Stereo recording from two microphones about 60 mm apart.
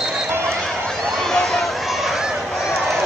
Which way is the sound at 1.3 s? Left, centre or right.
Centre.